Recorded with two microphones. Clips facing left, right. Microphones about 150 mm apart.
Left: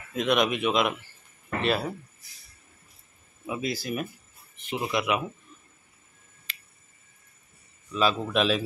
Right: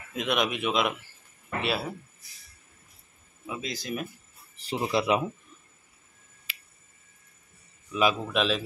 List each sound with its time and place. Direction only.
0.1 s speech: 5° right (ahead or behind)
3.4 s speech: 5° left (ahead or behind)
4.6 s speech: 30° right (ahead or behind)
6.5 s a sound: 10° right (ahead or behind)
7.9 s a man's voice: 10° right (ahead or behind)
8.3 s speech: centre (ahead or behind)